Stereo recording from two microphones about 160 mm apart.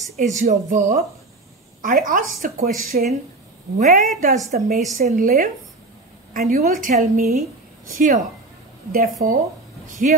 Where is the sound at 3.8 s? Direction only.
50° right (ahead or behind).